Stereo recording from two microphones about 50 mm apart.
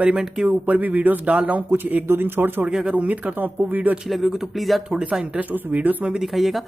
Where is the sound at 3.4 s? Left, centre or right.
Right.